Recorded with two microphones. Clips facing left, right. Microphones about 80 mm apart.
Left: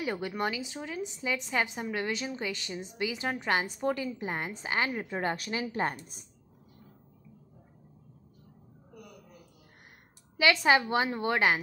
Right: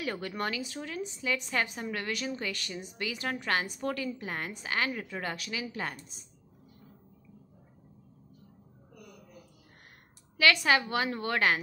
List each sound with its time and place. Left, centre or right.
0.0 s a woman's voice: centre; by 5.9 s left
10.3 s a woman's voice: left